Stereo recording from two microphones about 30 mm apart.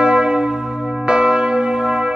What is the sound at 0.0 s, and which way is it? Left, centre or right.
Church bell, right.